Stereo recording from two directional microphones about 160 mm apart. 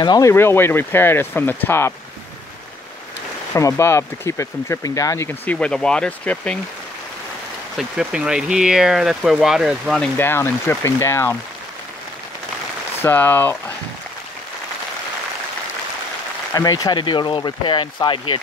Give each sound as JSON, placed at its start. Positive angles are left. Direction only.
{"t": 0.0, "sound": "speech", "side_deg": 25}
{"t": 3.5, "sound": "speech", "side_deg": 20}
{"t": 7.7, "sound": "speech", "side_deg": -5}
{"t": 10.1, "sound": "speech", "side_deg": 15}
{"t": 13.0, "sound": "speech", "side_deg": 10}
{"t": 16.5, "sound": "speech", "side_deg": 25}